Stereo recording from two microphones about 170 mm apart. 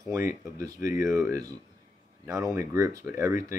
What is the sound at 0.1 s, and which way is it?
Speech, 20° right (ahead or behind).